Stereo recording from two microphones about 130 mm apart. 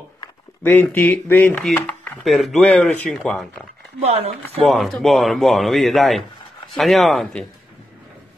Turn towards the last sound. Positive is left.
turn(degrees=0)  # may be behind; listen again after turning